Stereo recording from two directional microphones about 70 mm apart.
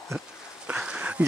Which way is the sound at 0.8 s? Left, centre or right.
Centre.